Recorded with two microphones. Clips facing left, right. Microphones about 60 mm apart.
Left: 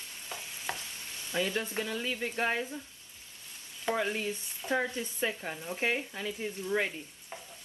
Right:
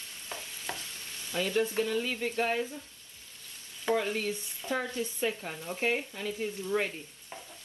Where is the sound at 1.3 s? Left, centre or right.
Left.